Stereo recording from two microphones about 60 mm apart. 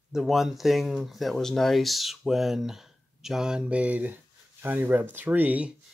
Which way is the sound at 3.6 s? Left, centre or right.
Right.